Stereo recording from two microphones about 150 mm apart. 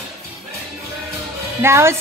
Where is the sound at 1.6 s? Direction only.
15° right (ahead or behind).